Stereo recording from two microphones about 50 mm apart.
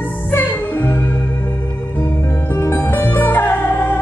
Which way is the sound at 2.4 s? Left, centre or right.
Left.